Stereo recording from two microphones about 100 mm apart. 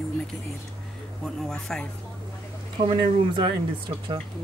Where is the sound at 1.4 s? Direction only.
5° left (ahead or behind).